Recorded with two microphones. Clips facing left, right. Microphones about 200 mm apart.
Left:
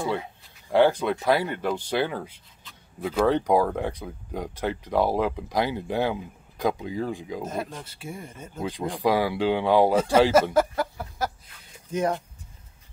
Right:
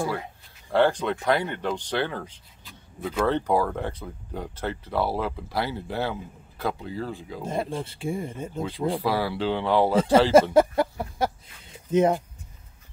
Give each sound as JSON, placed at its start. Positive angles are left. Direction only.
{"t": 0.7, "sound": "speech", "side_deg": 10}
{"t": 7.8, "sound": "speech", "side_deg": -25}
{"t": 8.5, "sound": "speech", "side_deg": 15}
{"t": 10.5, "sound": "a sound", "side_deg": -25}